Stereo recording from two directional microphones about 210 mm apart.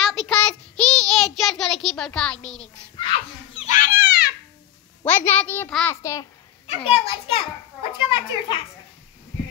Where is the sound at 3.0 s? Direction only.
25° left (ahead or behind); by 4.3 s 45° left (ahead or behind).